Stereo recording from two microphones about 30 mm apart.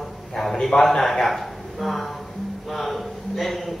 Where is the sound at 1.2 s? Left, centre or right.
Centre.